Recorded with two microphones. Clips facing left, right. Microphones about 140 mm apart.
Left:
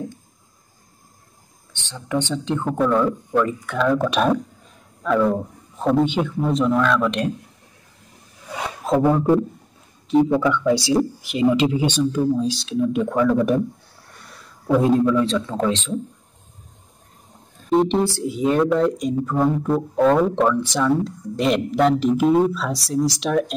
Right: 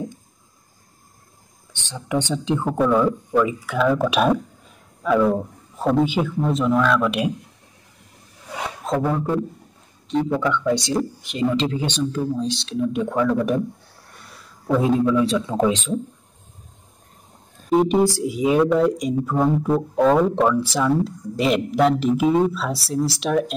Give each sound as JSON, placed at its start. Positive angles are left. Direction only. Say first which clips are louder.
{"t": 1.7, "sound": "speech", "louder": "even", "side_deg": -15}
{"t": 9.0, "sound": "a man's voice", "louder": "left 7 dB", "side_deg": 20}
{"t": 10.1, "sound": "a man's voice", "louder": "left 4 dB", "side_deg": 5}
{"t": 17.6, "sound": "speech", "louder": "right 1 dB", "side_deg": -5}